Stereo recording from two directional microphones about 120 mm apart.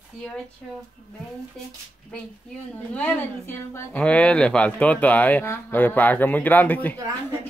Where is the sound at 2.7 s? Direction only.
10° left (ahead or behind).